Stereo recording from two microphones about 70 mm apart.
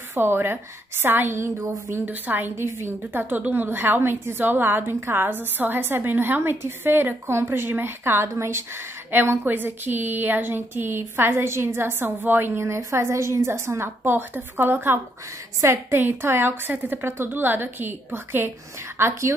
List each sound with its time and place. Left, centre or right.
0.1 s a woman's voice: right
12.5 s a woman's voice: right